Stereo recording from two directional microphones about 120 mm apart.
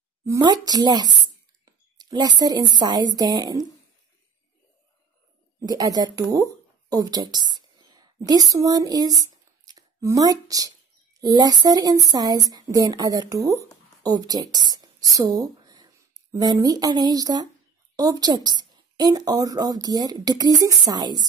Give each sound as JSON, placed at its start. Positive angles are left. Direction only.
{"t": 0.4, "sound": "a woman's voice", "side_deg": -35}
{"t": 5.7, "sound": "a woman's voice", "side_deg": -30}